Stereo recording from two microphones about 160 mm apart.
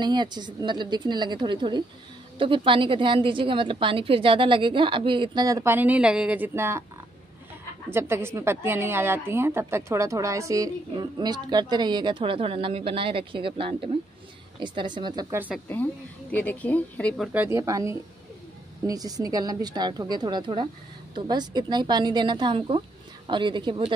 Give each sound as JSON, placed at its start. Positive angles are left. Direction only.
{"t": 0.0, "sound": "a woman's voice", "side_deg": -30}
{"t": 7.9, "sound": "a woman's voice", "side_deg": -15}
{"t": 15.3, "sound": "speech", "side_deg": -10}
{"t": 15.7, "sound": "a woman's voice", "side_deg": 10}
{"t": 17.2, "sound": "a woman's voice", "side_deg": -10}